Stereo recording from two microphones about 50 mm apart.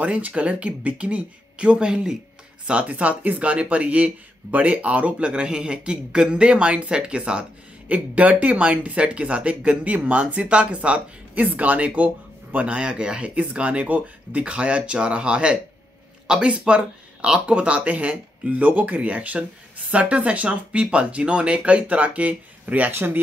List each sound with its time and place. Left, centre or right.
0.0 s speech: right
22.8 s speech: right